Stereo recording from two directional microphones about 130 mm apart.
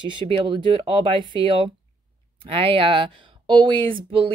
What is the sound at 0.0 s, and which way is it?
Speech, 40° right (ahead or behind).